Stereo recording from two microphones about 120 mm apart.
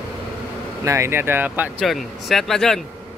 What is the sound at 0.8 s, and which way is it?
Speech, 25° right (ahead or behind).